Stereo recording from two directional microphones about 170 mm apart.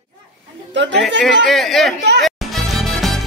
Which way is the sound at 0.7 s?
90° right.